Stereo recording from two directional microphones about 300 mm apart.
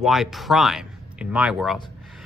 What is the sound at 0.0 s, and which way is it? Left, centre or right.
Speech, centre.